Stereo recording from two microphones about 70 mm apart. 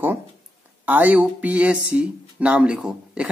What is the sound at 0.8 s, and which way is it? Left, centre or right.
Speech, right.